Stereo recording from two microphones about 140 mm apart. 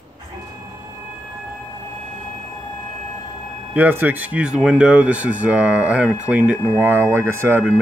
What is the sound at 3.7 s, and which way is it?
Speech, 15° right (ahead or behind).